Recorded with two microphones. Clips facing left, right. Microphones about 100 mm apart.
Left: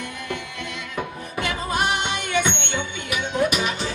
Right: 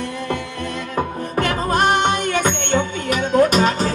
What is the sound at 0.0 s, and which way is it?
Music, 35° right (ahead or behind).